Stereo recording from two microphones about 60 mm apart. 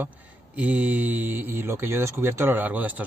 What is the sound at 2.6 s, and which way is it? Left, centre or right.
Speech, right.